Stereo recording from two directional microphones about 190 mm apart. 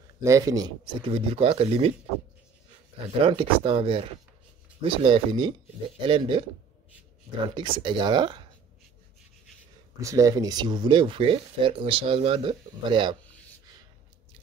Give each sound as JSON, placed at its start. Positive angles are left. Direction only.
{"t": 0.2, "sound": "speech", "side_deg": -15}
{"t": 3.2, "sound": "speech", "side_deg": -25}
{"t": 7.4, "sound": "speech", "side_deg": -25}
{"t": 9.9, "sound": "speech", "side_deg": -15}